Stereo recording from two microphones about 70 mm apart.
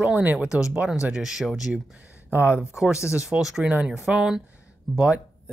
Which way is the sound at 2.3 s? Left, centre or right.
Right.